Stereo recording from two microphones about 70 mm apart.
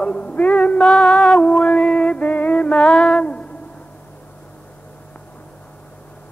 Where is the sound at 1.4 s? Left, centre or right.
Centre.